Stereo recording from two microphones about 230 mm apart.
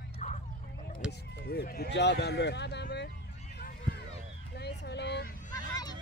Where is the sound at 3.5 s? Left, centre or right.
Left.